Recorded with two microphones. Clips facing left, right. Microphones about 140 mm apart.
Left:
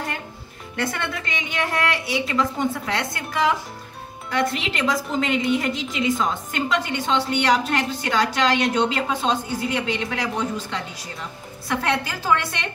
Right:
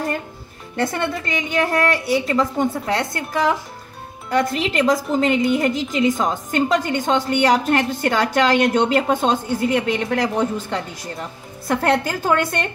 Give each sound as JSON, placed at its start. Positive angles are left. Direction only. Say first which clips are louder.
{"t": 0.7, "sound": "a woman's voice", "louder": "right 5 dB", "side_deg": -35}
{"t": 4.6, "sound": "a woman's voice", "louder": "right 6 dB", "side_deg": -45}